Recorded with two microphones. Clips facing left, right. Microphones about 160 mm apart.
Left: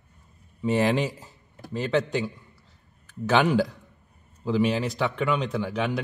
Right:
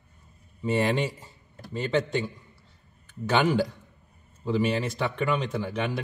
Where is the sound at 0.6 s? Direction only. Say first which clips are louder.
Left 2 dB; centre (ahead or behind).